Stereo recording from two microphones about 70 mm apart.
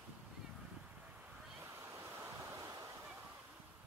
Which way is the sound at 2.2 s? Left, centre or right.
Right.